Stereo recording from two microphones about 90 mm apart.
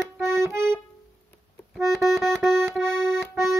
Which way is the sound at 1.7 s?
Centre (ahead or behind).